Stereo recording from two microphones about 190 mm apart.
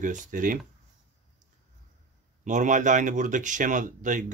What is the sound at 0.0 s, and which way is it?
Speech, 45° right (ahead or behind).